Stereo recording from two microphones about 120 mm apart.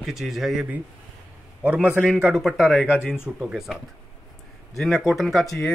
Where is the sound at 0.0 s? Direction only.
Centre (ahead or behind).